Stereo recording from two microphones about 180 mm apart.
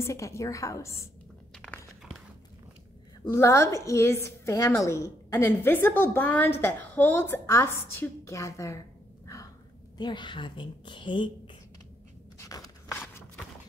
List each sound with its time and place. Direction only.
0.0 s a woman's voice: 15° left (ahead or behind)
1.6 s a sound: 5° left (ahead or behind)
3.3 s a woman's voice: 15° left (ahead or behind)
9.3 s gasp: 15° left (ahead or behind)
9.9 s speech: 25° left (ahead or behind)
12.4 s crunch: 20° left (ahead or behind)